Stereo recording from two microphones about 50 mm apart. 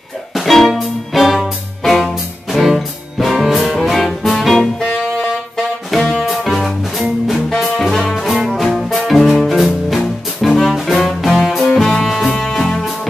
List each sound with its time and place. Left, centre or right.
0.3 s music: centre
5.9 s music: left
6.2 s music: centre